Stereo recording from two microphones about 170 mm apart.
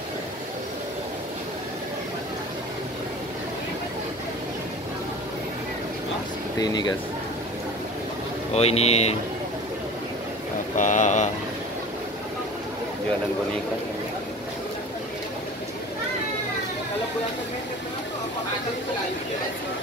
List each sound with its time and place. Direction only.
6.6 s speech: 25° left (ahead or behind)
8.5 s speech: 40° left (ahead or behind)
10.8 s speech: 45° left (ahead or behind)